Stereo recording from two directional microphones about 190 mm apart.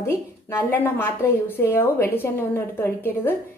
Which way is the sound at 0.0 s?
10° left (ahead or behind).